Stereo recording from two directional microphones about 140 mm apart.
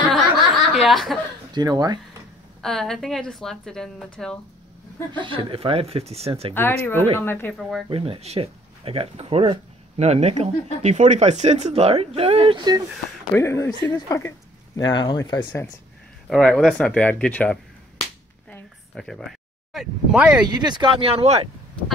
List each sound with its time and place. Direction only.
0.1 s snicker: centre (ahead or behind)
1.5 s speech: 30° right (ahead or behind)
2.6 s a woman's voice: 5° left (ahead or behind)
5.2 s speech: 40° right (ahead or behind)
6.5 s speech: 15° left (ahead or behind)
7.9 s speech: 40° right (ahead or behind)
13.4 s speech: 20° left (ahead or behind)
16.3 s speech: 5° left (ahead or behind)
18.5 s a sound: centre (ahead or behind)
20.4 s speech: 30° right (ahead or behind)